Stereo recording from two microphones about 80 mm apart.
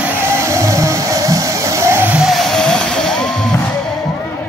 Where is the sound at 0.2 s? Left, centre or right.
Right.